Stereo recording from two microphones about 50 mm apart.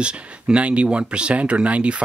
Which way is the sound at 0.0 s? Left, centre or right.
Right.